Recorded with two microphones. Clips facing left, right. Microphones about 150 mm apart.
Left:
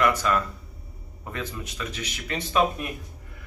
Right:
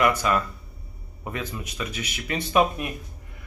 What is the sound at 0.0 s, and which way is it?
Speech, 10° right (ahead or behind).